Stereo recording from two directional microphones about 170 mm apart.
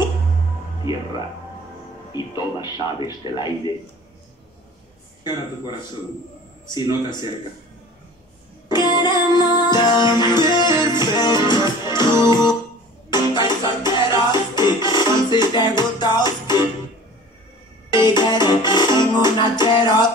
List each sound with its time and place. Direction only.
2.1 s speech: 25° left (ahead or behind)
5.2 s speech: 25° left (ahead or behind)
8.6 s music: 25° left (ahead or behind)
17.8 s music: 25° left (ahead or behind)